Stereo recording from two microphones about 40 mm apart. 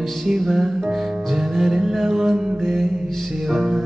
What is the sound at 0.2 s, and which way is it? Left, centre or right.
Music, centre.